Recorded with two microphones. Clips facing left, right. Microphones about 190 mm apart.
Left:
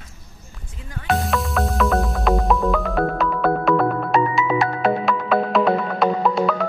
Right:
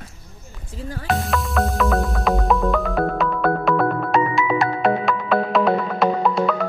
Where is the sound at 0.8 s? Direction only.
35° right (ahead or behind).